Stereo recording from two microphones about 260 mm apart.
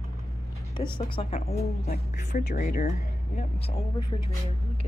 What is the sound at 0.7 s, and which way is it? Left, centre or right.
A woman's voice, centre.